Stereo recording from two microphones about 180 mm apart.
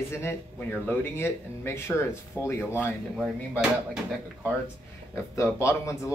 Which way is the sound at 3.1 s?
Centre (ahead or behind).